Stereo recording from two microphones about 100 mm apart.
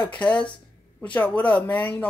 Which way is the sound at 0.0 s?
10° left (ahead or behind).